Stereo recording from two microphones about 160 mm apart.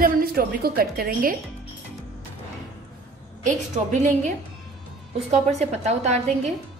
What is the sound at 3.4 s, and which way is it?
A woman's voice, 50° right (ahead or behind).